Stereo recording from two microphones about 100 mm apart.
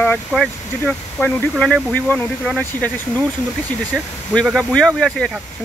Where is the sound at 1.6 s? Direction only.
Centre (ahead or behind).